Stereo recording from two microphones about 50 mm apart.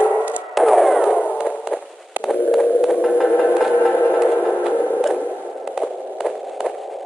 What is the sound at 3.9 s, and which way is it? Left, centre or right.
Music, left.